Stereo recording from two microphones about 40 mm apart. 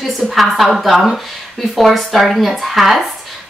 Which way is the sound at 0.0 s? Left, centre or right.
Centre.